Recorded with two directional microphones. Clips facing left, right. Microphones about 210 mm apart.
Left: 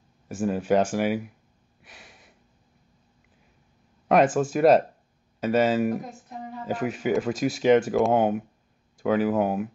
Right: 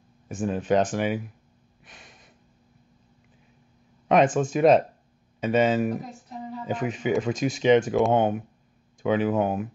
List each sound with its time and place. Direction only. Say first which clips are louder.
0.3 s speech: left 1 dB; 5° left (ahead or behind)
1.8 s a sound: left 1 dB; 5° left (ahead or behind)
4.1 s speech: even; 5° left (ahead or behind)